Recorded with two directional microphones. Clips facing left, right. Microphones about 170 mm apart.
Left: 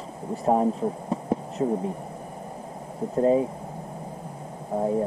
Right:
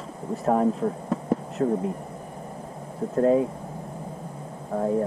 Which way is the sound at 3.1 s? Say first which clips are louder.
Right 1 dB; 10° left (ahead or behind).